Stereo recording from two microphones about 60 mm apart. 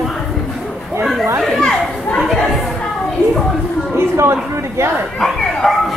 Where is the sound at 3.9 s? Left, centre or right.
Right.